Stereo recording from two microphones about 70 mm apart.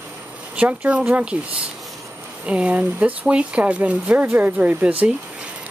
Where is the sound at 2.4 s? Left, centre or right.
Centre.